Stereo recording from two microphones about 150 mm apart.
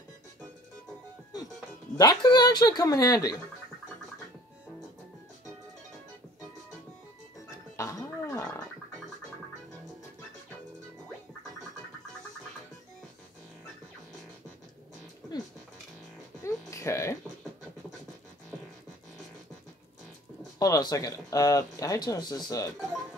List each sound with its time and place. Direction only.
2.0 s speech: 30° left (ahead or behind)
7.5 s music: 20° left (ahead or behind)
16.4 s music: 20° left (ahead or behind)
20.5 s speech: 25° left (ahead or behind)